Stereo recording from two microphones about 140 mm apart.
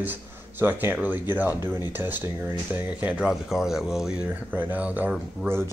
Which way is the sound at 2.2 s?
25° right (ahead or behind).